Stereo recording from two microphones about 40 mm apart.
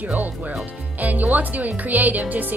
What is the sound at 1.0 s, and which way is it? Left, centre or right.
Speech, right.